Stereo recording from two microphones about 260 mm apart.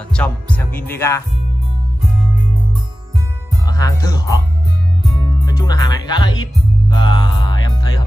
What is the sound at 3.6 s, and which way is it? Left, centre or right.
Speech, centre.